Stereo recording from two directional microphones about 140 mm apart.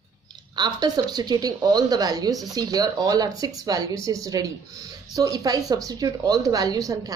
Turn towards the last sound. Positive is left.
turn(degrees=-25)  # may be behind; listen again after turning